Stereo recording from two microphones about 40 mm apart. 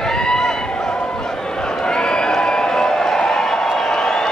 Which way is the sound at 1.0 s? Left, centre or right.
Centre.